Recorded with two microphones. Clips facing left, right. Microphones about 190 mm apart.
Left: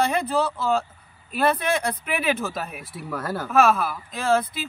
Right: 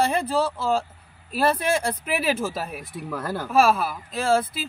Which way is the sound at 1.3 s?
30° right (ahead or behind).